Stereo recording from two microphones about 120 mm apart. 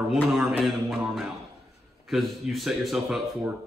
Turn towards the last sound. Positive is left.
turn(degrees=0)  # may be behind; listen again after turning